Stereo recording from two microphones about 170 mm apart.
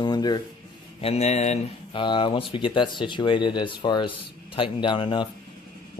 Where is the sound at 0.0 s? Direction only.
25° left (ahead or behind).